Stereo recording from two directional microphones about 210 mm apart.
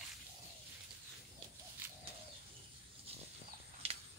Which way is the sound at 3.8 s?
30° right (ahead or behind).